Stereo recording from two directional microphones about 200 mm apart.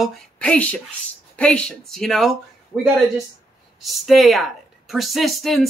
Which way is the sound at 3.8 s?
Centre (ahead or behind).